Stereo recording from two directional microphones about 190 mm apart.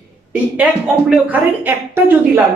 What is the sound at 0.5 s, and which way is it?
Speech, 5° right (ahead or behind).